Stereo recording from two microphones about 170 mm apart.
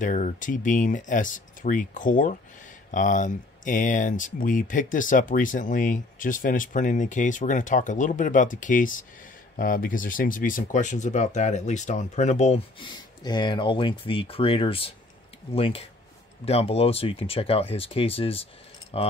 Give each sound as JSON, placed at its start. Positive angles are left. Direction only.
{"t": 0.0, "sound": "speech", "side_deg": 50}